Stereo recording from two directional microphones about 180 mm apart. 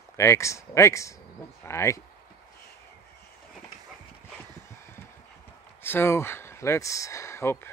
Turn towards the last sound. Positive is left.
turn(degrees=15)  # may be behind; listen again after turning